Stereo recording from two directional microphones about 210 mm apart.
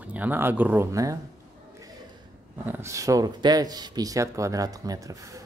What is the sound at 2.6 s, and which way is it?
Speech, 10° right (ahead or behind).